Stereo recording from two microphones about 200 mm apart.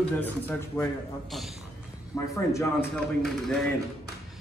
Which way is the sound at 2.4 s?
15° left (ahead or behind).